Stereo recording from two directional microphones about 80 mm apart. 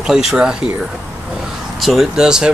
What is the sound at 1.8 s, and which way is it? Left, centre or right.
Speech, centre.